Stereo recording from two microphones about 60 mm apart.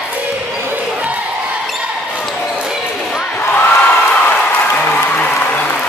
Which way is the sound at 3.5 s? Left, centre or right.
Left.